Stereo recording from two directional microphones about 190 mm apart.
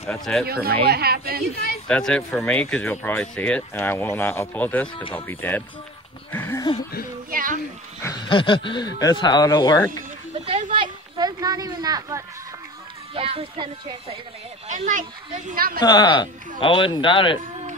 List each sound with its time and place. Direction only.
0.1 s speech: centre (ahead or behind)
0.8 s speech: 55° right (ahead or behind)
1.9 s speech: 5° left (ahead or behind)
7.2 s a sound: 45° right (ahead or behind)
8.0 s a sound: 20° left (ahead or behind)
9.0 s speech: 20° left (ahead or behind)
10.3 s a sound: 35° right (ahead or behind)
13.1 s speech: 30° right (ahead or behind)
14.7 s speech: 40° right (ahead or behind)
15.8 s speech: 20° left (ahead or behind)